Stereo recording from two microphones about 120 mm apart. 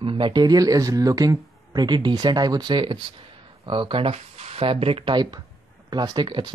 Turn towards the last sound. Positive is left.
turn(degrees=-40)  # may be behind; listen again after turning